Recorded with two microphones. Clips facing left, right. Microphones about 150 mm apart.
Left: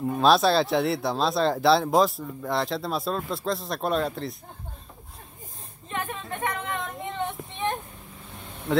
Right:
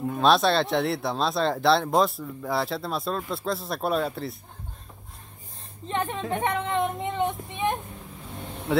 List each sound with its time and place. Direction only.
0.1 s speech: centre (ahead or behind)
5.9 s speech: 25° right (ahead or behind)
7.2 s vehicle: 15° right (ahead or behind)
8.7 s speech: 5° right (ahead or behind)